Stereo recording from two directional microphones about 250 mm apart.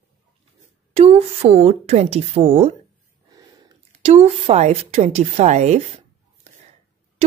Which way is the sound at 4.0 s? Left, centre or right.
Right.